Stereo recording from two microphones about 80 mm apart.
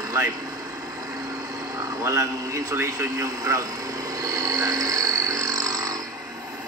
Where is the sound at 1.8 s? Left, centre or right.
Right.